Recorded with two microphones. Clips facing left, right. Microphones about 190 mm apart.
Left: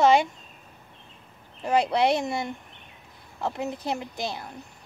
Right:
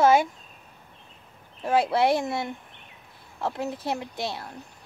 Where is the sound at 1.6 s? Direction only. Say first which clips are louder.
Even; centre (ahead or behind).